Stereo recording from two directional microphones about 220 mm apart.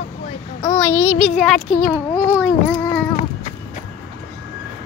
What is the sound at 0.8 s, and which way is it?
A child's voice, 10° left (ahead or behind).